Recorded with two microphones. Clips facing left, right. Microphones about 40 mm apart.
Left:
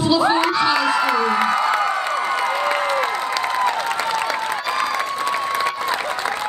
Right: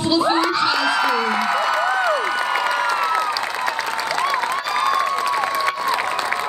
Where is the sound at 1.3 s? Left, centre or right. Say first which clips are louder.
Left 1 dB; left.